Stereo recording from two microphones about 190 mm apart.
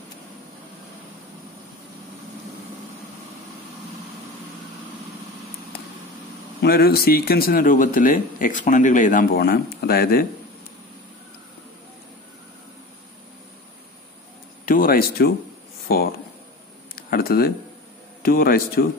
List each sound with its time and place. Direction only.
6.6 s speech: 55° left (ahead or behind)
14.7 s speech: 50° left (ahead or behind)